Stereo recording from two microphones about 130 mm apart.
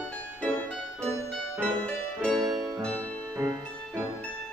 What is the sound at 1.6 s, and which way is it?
Music, 5° left (ahead or behind).